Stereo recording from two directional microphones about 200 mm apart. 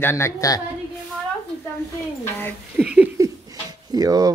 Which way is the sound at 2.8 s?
5° right (ahead or behind).